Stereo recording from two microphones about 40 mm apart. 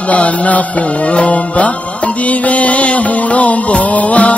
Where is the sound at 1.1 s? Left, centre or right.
Left.